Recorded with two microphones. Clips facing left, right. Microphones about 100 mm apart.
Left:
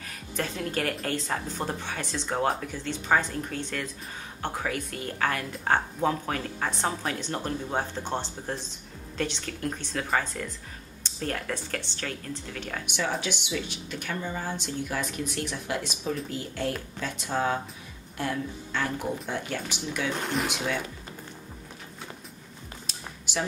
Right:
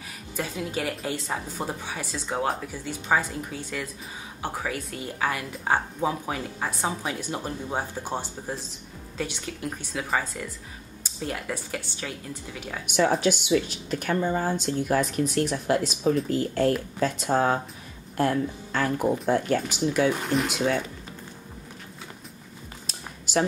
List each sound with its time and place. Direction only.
0.4 s a woman's voice: 5° right (ahead or behind)
12.9 s a woman's voice: 40° right (ahead or behind)
20.1 s speech: centre (ahead or behind)